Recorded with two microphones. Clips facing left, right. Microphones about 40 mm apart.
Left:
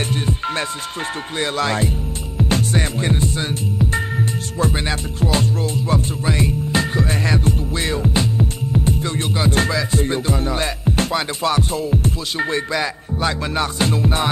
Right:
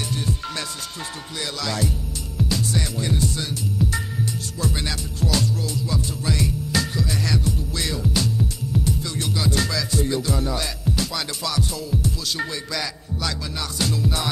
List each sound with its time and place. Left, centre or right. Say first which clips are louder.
0.1 s music: left 5 dB; left